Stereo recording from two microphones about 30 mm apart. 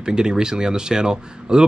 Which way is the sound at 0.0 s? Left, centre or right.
Right.